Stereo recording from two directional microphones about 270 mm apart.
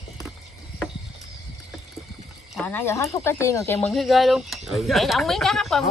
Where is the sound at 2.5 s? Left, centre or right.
Centre.